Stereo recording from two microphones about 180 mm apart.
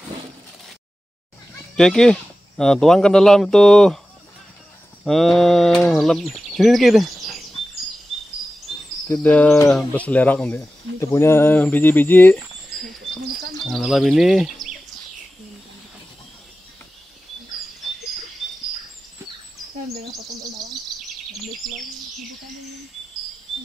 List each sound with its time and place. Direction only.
1.8 s speech: 5° left (ahead or behind)
5.0 s speech: centre (ahead or behind)
9.0 s speech: 10° left (ahead or behind)
12.4 s rodents: centre (ahead or behind)
13.7 s speech: centre (ahead or behind)